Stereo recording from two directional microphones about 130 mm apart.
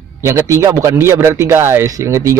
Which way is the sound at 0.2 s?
25° right (ahead or behind).